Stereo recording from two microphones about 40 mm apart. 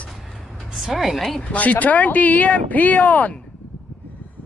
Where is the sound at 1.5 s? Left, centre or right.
Left.